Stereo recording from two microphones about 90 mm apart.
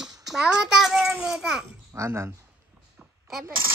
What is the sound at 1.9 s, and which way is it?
Speech, 30° right (ahead or behind).